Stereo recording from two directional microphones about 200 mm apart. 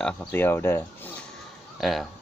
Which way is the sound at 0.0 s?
5° left (ahead or behind).